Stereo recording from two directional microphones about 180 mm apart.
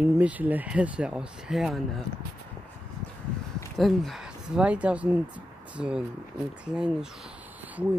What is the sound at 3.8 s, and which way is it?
Speech, centre (ahead or behind).